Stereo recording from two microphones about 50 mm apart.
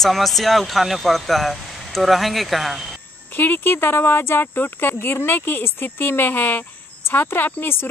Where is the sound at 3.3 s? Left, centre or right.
Left.